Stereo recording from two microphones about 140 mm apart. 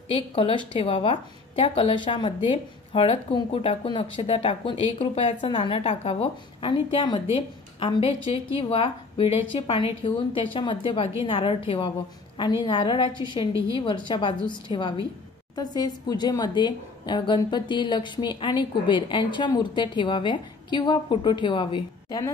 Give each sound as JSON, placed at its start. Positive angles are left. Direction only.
{"t": 0.1, "sound": "speech", "side_deg": 40}